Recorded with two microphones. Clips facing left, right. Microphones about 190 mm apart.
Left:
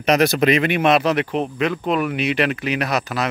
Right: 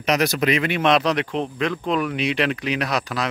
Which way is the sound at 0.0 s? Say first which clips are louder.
Left 4 dB; 55° left (ahead or behind).